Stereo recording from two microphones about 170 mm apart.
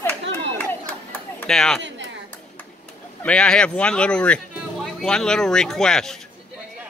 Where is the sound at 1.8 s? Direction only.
90° right.